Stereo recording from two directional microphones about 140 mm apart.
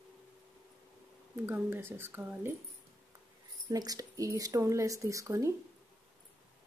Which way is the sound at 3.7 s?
25° right (ahead or behind).